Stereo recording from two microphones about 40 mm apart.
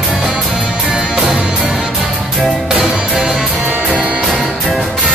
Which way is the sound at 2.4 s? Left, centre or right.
Centre.